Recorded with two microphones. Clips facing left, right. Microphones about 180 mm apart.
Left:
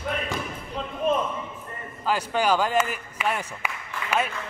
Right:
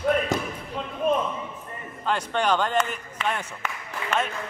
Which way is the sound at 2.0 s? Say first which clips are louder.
Left 1 dB; 5° left (ahead or behind).